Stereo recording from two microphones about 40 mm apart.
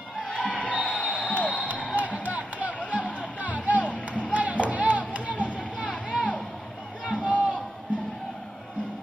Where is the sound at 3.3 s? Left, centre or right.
Right.